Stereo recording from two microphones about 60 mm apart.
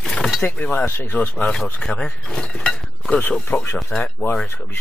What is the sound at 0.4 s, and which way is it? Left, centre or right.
Speech, left.